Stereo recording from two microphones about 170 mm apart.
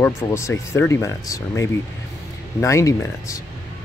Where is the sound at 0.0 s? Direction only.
15° left (ahead or behind).